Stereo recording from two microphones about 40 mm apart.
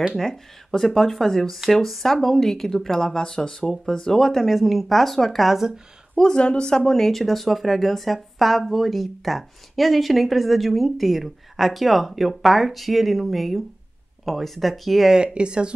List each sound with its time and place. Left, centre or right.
0.2 s speech: centre
6.1 s speech: centre
15.1 s speech: right